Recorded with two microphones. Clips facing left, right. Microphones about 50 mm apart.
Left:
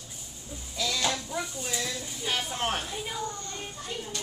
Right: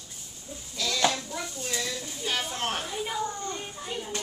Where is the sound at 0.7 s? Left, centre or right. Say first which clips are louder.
Even; centre.